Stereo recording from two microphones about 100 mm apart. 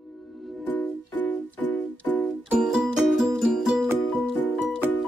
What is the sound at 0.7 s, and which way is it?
Music, 15° left (ahead or behind).